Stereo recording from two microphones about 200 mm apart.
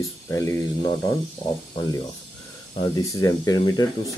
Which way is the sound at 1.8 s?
20° left (ahead or behind).